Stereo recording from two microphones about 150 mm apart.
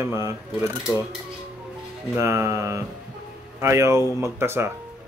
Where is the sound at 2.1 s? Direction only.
20° right (ahead or behind).